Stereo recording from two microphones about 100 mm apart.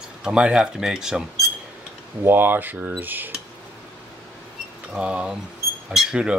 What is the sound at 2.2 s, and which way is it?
Speech, 20° right (ahead or behind).